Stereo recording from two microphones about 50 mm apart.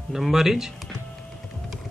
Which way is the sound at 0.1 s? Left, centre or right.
Centre.